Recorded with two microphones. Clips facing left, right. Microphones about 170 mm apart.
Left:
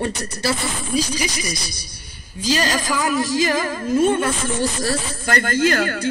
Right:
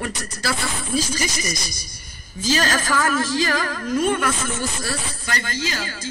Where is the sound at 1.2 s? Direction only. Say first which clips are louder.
Left 1 dB; 10° left (ahead or behind).